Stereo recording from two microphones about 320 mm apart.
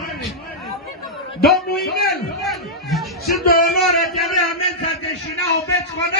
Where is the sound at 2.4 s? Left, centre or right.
Centre.